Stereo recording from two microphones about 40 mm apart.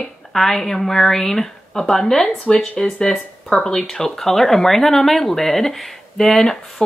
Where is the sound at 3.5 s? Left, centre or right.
Centre.